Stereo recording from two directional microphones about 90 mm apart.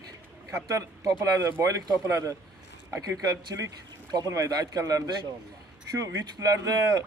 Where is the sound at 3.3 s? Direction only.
45° right (ahead or behind).